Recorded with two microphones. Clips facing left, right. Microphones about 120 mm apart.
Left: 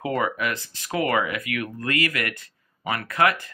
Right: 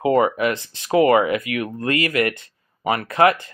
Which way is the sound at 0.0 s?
25° right (ahead or behind).